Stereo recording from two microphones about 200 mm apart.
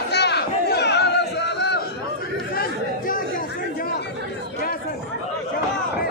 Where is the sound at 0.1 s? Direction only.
55° left (ahead or behind).